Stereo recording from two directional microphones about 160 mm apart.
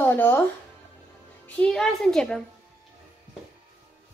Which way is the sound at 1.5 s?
5° left (ahead or behind).